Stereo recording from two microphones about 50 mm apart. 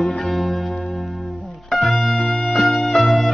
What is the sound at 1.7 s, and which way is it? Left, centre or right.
Music, centre.